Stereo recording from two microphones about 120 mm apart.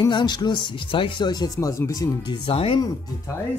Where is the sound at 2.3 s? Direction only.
50° left (ahead or behind).